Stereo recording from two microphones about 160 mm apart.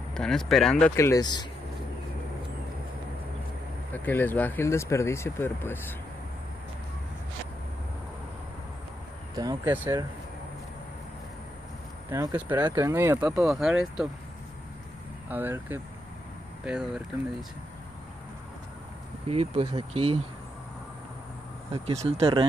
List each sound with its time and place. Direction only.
0.1 s speech: 5° left (ahead or behind)
0.9 s speech: 20° left (ahead or behind)
3.9 s speech: 10° left (ahead or behind)
9.3 s speech: 25° right (ahead or behind)
12.1 s speech: 20° right (ahead or behind)
12.9 s speech: 15° right (ahead or behind)
15.2 s speech: 10° right (ahead or behind)
19.2 s speech: 40° right (ahead or behind)
22.0 s speech: 35° right (ahead or behind)